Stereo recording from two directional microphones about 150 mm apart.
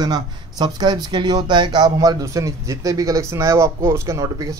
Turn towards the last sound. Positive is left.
turn(degrees=-25)  # may be behind; listen again after turning